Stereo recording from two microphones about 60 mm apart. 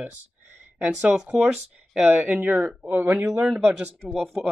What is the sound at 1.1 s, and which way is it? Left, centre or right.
Speech, centre.